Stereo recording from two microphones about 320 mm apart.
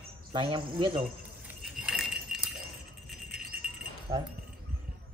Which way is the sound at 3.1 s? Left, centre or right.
Centre.